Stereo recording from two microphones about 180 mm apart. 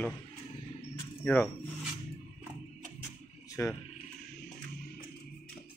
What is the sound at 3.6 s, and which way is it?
Speech, 15° left (ahead or behind).